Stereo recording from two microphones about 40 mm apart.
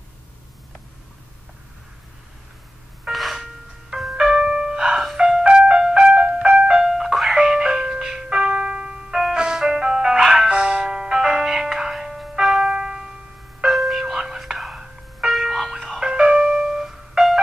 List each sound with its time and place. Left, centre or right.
3.1 s a sound: centre
3.9 s ice cream truck: centre
5.0 s music: centre
5.4 s music: right; by 7.3 s centre
7.3 s ice cream truck: centre
9.1 s music: centre
11.9 s ice cream truck: centre
12.7 s music: centre
13.7 s tubular bells: centre
14.1 s whispering: centre
15.2 s music: centre
16.0 s music: centre